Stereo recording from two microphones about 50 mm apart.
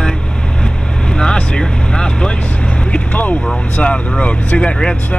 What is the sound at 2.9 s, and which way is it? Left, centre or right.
Vehicle, left.